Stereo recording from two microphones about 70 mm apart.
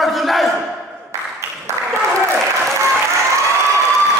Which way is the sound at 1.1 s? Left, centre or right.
Right.